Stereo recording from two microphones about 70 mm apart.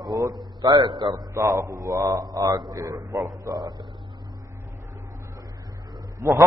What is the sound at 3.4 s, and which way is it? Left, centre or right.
Speech, right.